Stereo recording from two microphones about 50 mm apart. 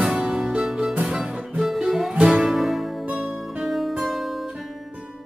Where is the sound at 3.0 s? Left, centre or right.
Centre.